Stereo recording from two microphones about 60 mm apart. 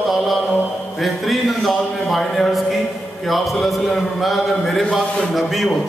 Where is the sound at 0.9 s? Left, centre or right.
Centre.